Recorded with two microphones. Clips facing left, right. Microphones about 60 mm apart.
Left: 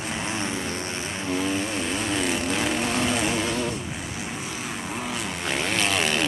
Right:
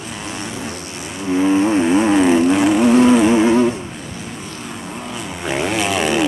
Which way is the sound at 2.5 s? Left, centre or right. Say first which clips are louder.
Right 11 dB; centre.